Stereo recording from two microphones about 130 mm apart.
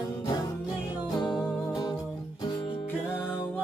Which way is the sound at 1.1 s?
35° left (ahead or behind).